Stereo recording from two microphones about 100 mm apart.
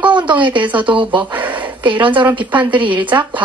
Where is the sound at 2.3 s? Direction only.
50° right (ahead or behind).